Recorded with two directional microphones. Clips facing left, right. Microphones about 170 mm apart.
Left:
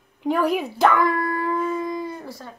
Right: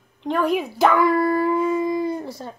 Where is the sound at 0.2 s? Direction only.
5° left (ahead or behind).